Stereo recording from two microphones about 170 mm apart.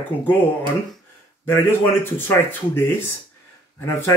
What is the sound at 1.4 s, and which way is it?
Speech, 15° left (ahead or behind).